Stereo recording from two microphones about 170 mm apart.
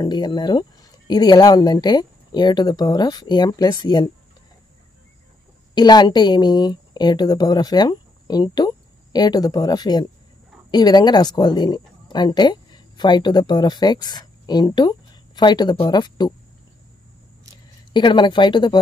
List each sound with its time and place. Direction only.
0.0 s speech: 25° left (ahead or behind)
5.8 s a woman's voice: 25° left (ahead or behind)
17.9 s speech: 25° left (ahead or behind)